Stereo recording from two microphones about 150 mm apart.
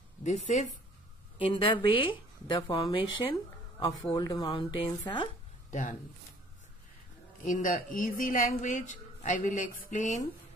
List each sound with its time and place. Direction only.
0.2 s speech: 50° left (ahead or behind)
1.4 s speech: 35° left (ahead or behind)
5.7 s speech: 55° left (ahead or behind)
7.4 s speech: 65° left (ahead or behind)